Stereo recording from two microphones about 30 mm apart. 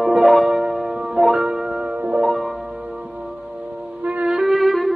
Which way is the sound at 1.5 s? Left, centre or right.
Right.